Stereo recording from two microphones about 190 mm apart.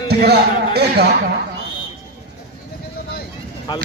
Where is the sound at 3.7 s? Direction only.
25° left (ahead or behind).